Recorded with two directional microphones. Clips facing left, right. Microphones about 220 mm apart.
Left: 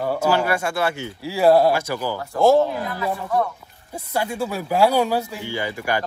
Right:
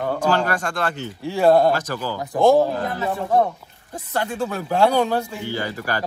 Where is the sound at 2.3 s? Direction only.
15° right (ahead or behind).